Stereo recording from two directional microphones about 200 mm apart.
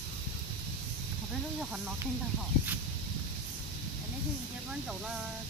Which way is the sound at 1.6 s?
5° right (ahead or behind).